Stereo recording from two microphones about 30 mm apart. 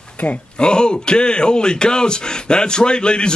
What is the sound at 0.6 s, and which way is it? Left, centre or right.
A man's voice, left.